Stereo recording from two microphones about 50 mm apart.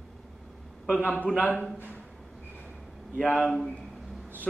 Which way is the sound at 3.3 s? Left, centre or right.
Centre.